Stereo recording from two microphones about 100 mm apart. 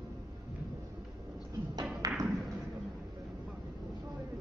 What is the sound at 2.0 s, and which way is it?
Music, 40° right (ahead or behind).